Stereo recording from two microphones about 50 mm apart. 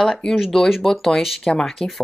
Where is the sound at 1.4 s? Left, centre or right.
Centre.